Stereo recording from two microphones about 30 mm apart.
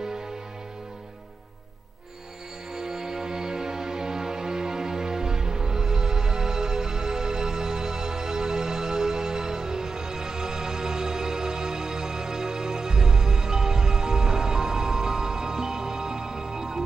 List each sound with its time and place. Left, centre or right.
2.7 s music: centre